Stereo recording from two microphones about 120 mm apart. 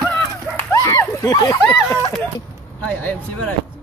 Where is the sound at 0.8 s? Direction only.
25° left (ahead or behind).